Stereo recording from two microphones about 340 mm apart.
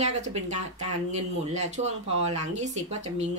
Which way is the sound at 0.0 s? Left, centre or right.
Centre.